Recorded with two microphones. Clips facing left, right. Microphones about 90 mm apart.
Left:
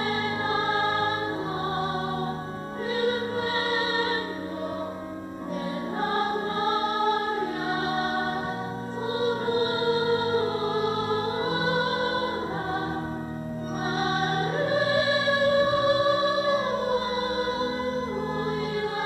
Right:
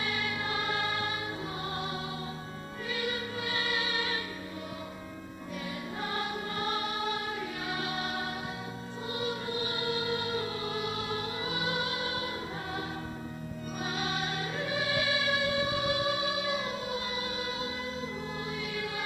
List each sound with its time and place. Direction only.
0.1 s music: 35° left (ahead or behind)
2.9 s music: 35° left (ahead or behind)
5.9 s music: 35° left (ahead or behind)
9.2 s music: 40° left (ahead or behind)
13.9 s music: 35° left (ahead or behind)